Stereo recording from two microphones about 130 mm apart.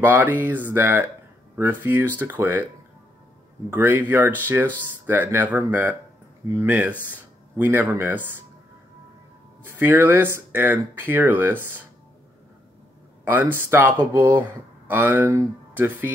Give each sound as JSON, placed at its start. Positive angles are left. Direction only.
{"t": 0.0, "sound": "speech", "side_deg": -15}
{"t": 3.7, "sound": "speech", "side_deg": -15}
{"t": 9.7, "sound": "speech", "side_deg": -15}
{"t": 13.2, "sound": "speech", "side_deg": -15}